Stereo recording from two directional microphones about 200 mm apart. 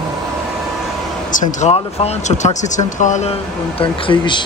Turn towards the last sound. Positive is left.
turn(degrees=25)  # may be behind; listen again after turning